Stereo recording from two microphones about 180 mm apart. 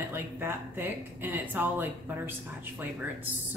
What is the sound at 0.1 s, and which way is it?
Speech, 10° right (ahead or behind).